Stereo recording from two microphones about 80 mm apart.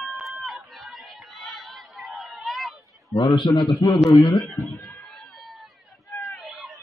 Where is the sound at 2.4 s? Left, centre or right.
Centre.